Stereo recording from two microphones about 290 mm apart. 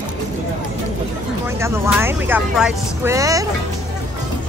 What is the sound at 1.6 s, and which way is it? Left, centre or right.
Speech, centre.